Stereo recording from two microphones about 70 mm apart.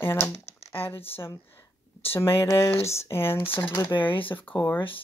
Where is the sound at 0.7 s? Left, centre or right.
Left.